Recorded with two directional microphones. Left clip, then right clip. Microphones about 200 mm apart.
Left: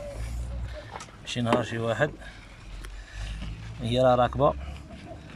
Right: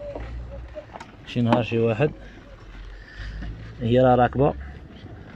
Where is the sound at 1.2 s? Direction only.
5° right (ahead or behind).